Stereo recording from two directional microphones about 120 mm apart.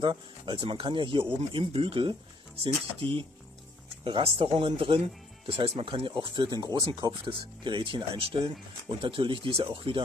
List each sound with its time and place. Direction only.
0.0 s speech: 40° right (ahead or behind)